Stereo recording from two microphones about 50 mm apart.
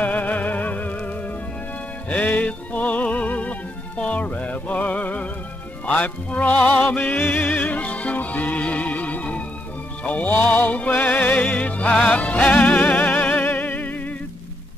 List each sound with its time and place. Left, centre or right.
0.0 s music: left
7.0 s music: left